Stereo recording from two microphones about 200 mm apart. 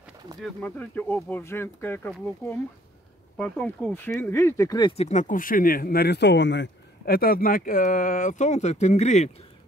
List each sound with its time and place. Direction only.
0.4 s speech: 5° left (ahead or behind); by 9.3 s 35° left (ahead or behind)